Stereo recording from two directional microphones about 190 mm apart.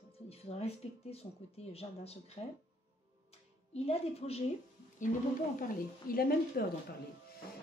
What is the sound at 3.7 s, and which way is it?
Speech, 30° left (ahead or behind).